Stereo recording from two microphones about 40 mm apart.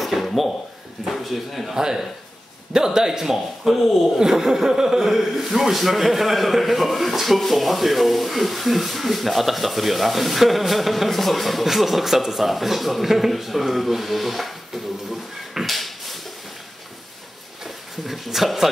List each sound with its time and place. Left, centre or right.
0.0 s a sound: centre
1.1 s speech: centre
1.8 s a man's voice: centre
4.2 s speech: centre
15.6 s a sound: centre
17.6 s speech: centre